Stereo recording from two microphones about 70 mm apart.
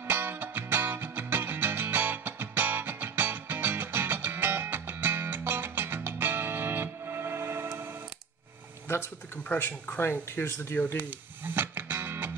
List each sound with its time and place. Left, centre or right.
0.0 s music: right
9.5 s speech: left
11.0 s music: right